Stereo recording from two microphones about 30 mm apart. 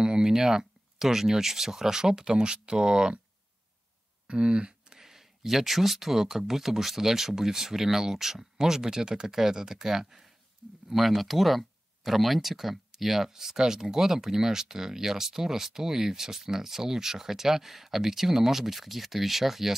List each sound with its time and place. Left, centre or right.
0.0 s speech: right
4.3 s speech: right
4.9 s a sound: centre
5.6 s speech: centre
10.9 s speech: centre